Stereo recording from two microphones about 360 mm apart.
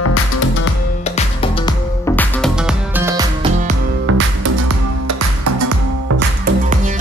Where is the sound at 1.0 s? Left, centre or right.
Centre.